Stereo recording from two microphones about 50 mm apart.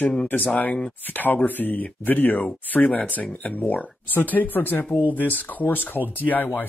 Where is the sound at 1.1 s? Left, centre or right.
Left.